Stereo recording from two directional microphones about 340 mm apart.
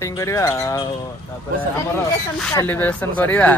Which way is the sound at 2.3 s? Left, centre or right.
Centre.